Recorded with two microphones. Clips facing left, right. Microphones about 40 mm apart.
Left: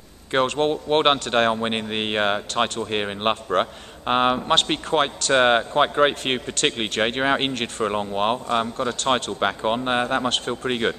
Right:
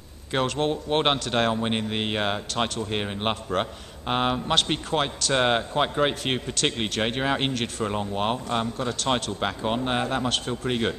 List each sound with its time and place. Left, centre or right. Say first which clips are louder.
0.3 s a man's voice: left 4 dB; centre